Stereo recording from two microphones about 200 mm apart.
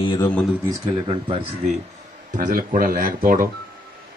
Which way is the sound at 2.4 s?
45° right (ahead or behind).